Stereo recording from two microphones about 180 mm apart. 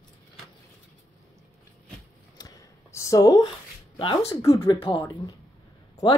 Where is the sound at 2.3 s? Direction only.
20° left (ahead or behind).